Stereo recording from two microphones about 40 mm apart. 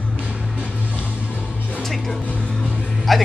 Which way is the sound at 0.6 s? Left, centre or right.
Right.